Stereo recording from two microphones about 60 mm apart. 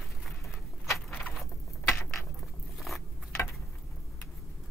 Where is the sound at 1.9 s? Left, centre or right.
Left.